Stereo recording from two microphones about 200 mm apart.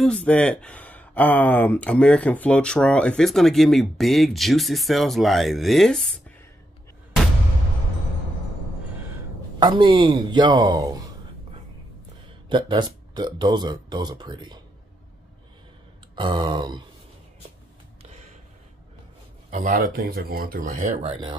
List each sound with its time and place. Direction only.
0.0 s speech: 5° left (ahead or behind)
9.6 s speech: 25° right (ahead or behind)
12.4 s speech: 25° right (ahead or behind)
16.2 s speech: 25° right (ahead or behind)
19.5 s speech: 40° right (ahead or behind)